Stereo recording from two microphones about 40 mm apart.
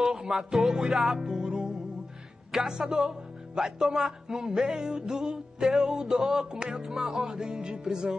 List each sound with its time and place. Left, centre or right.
0.0 s music: centre
2.5 s music: centre